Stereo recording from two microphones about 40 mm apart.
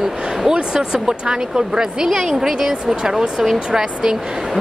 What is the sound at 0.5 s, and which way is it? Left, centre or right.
A woman's voice, centre.